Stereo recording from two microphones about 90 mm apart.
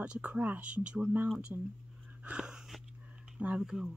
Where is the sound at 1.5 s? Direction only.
30° right (ahead or behind).